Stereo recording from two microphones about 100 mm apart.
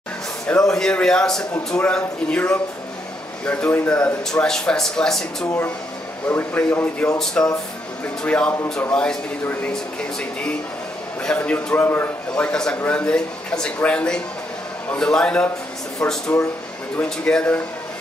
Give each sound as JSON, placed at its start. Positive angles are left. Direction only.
{"t": 0.5, "sound": "a man's voice", "side_deg": 5}
{"t": 6.2, "sound": "speech", "side_deg": 15}
{"t": 11.2, "sound": "speech", "side_deg": 10}
{"t": 12.4, "sound": "a man's voice", "side_deg": 5}